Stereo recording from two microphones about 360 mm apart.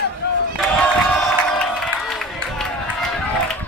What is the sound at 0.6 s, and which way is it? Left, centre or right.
Crowd, centre.